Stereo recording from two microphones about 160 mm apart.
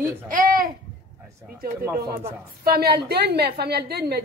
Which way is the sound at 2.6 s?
70° right (ahead or behind).